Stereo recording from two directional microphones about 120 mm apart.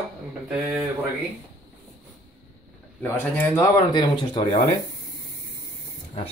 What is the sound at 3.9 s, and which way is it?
Speech, 40° left (ahead or behind).